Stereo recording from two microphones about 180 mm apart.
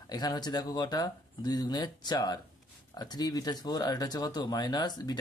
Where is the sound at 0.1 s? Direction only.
20° left (ahead or behind).